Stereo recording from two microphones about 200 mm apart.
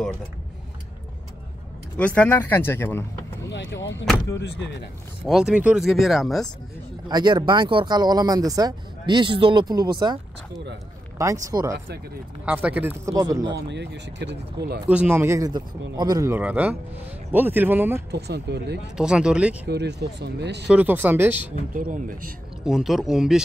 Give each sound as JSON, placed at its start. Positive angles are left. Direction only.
{"t": 2.0, "sound": "speech", "side_deg": 5}
{"t": 3.4, "sound": "speech", "side_deg": 65}
{"t": 3.9, "sound": "speech", "side_deg": 5}
{"t": 5.2, "sound": "speech", "side_deg": 0}
{"t": 7.1, "sound": "speech", "side_deg": -20}
{"t": 11.4, "sound": "speech", "side_deg": -15}
{"t": 13.5, "sound": "speech", "side_deg": -60}
{"t": 14.9, "sound": "speech", "side_deg": -10}
{"t": 18.1, "sound": "speech", "side_deg": -55}
{"t": 18.9, "sound": "speech", "side_deg": -5}
{"t": 19.7, "sound": "speech", "side_deg": -55}
{"t": 20.6, "sound": "speech", "side_deg": -5}
{"t": 21.7, "sound": "speech", "side_deg": -40}
{"t": 22.7, "sound": "speech", "side_deg": 0}